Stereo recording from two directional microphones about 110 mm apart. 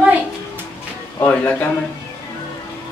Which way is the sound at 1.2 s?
15° left (ahead or behind).